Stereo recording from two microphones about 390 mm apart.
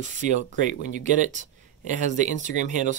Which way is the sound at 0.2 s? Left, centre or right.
Centre.